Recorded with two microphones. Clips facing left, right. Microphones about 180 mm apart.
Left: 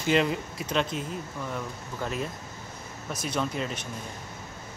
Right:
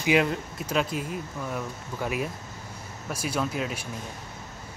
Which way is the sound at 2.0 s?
10° right (ahead or behind).